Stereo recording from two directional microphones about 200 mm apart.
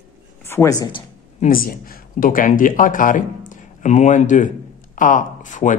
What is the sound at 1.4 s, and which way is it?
Speech, 45° left (ahead or behind).